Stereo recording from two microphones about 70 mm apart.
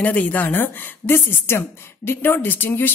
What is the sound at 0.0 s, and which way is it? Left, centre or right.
A woman's voice, left.